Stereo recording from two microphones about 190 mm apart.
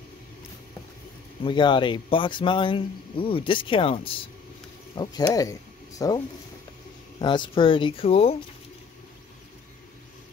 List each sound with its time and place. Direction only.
1.4 s speech: 25° left (ahead or behind)